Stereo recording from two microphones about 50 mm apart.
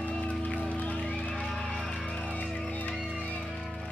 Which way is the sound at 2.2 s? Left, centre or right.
Left.